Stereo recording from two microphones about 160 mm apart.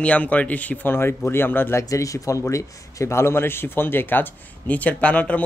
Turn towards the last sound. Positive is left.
turn(degrees=10)  # may be behind; listen again after turning